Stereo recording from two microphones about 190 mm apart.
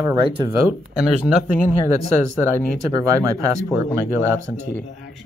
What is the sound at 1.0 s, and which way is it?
Speech, 5° right (ahead or behind).